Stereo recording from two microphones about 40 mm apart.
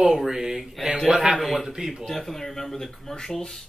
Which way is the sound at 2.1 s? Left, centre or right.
Centre.